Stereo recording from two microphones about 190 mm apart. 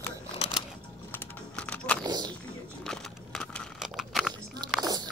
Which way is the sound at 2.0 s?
20° right (ahead or behind).